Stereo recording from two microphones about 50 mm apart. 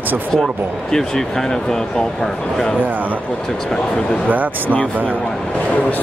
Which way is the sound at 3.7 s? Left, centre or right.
Centre.